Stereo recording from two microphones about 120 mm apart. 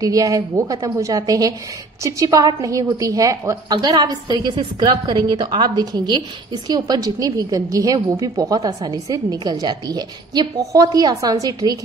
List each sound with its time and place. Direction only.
0.0 s a woman's voice: 30° right (ahead or behind)